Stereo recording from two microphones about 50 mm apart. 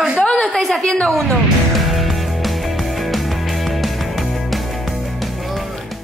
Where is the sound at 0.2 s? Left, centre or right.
Centre.